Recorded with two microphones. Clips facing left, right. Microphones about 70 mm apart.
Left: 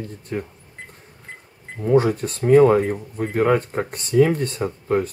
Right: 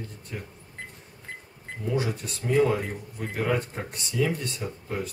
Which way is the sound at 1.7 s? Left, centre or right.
Left.